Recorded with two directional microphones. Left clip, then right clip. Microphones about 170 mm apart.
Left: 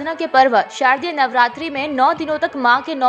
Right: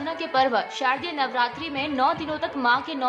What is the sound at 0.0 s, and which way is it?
A woman's voice, 35° left (ahead or behind).